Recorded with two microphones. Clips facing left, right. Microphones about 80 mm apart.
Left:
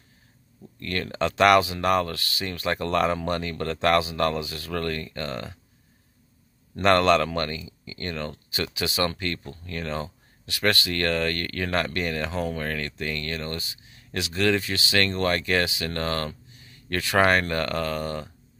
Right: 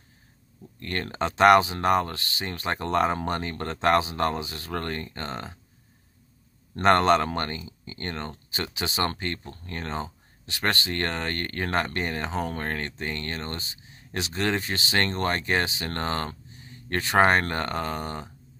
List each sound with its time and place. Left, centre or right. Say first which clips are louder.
0.7 s speech: left 2 dB; right
6.8 s speech: even; right
12.4 s speech: left 1 dB; right